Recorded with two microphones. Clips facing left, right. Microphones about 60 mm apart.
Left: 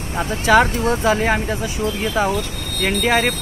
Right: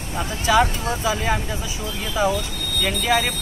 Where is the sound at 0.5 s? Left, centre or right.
Left.